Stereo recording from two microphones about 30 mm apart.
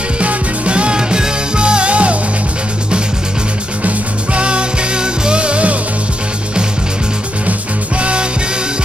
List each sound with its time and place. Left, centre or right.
0.2 s music: right
3.8 s music: right
8.0 s music: right